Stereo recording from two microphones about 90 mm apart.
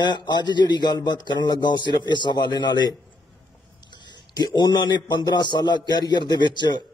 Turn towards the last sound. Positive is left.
turn(degrees=55)  # may be behind; listen again after turning